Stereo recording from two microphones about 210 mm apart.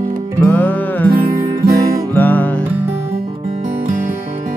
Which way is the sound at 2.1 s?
10° left (ahead or behind).